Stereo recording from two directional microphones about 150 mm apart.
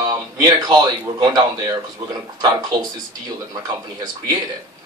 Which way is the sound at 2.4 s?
25° right (ahead or behind).